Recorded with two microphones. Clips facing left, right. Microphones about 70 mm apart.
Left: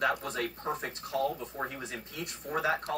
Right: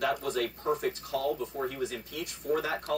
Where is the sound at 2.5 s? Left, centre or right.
Left.